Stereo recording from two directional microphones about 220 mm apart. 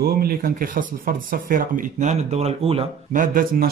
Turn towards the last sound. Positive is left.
turn(degrees=-40)  # may be behind; listen again after turning